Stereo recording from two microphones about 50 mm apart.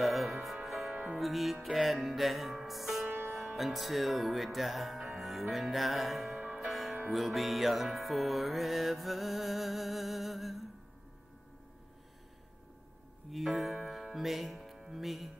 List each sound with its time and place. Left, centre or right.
0.0 s music: centre
3.1 s music: right
3.3 s music: centre
13.3 s music: centre